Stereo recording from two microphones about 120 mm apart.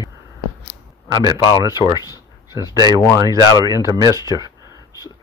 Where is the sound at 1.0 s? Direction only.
35° right (ahead or behind).